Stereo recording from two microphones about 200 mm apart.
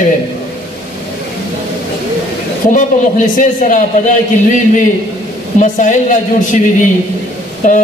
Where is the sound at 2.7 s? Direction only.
40° left (ahead or behind).